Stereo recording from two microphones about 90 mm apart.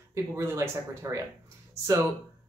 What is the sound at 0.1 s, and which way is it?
Speech, 35° right (ahead or behind).